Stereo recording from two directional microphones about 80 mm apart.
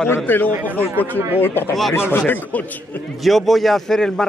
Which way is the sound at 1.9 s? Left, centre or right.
Left.